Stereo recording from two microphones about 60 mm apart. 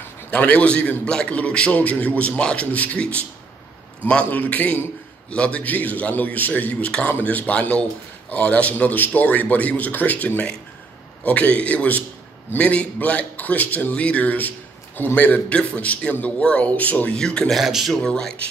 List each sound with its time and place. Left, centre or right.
0.3 s a man's voice: left
4.3 s a man's voice: left
17.5 s a man's voice: centre
18.0 s speech: centre